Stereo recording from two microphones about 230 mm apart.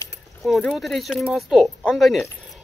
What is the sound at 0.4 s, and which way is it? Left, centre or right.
Speech, centre.